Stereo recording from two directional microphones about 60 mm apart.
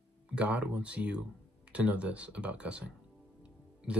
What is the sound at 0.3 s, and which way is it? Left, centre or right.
Speech, right.